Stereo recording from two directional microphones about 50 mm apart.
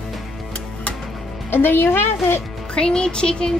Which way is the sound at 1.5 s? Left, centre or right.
Left.